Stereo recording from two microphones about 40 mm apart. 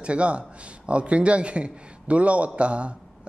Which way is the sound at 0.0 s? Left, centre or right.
Right.